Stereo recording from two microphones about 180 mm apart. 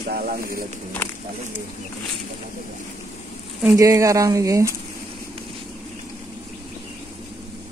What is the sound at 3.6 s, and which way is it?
Speech, 15° right (ahead or behind).